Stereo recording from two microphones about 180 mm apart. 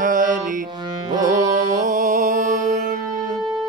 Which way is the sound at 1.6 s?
45° right (ahead or behind).